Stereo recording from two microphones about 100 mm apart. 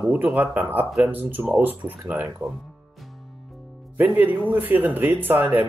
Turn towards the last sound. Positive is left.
turn(degrees=-15)  # may be behind; listen again after turning